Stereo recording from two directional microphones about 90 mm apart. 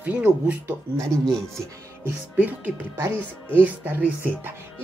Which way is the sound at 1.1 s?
5° left (ahead or behind).